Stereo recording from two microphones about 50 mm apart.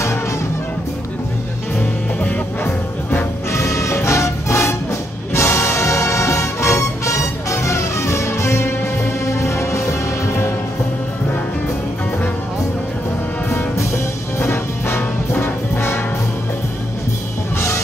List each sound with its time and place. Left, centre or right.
1.8 s music: left
2.6 s music: left
3.5 s music: left
5.3 s music: left
13.5 s music: left
15.4 s brass instrument: left